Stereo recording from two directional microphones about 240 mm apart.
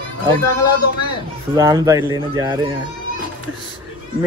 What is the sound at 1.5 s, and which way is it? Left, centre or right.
Speech, centre.